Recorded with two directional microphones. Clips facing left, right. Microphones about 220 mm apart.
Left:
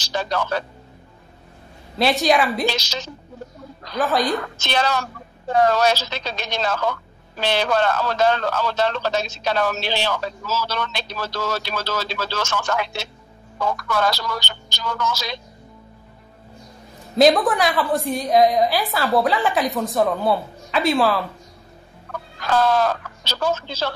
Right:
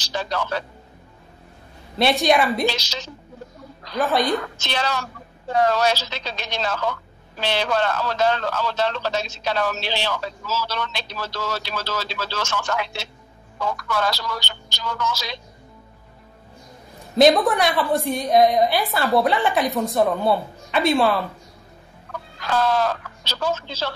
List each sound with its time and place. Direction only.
0.0 s a woman's voice: 50° left (ahead or behind)
2.0 s a woman's voice: centre (ahead or behind)
4.0 s a woman's voice: centre (ahead or behind)
4.6 s a woman's voice: 50° left (ahead or behind)
17.2 s a woman's voice: centre (ahead or behind)
22.5 s a woman's voice: 50° left (ahead or behind)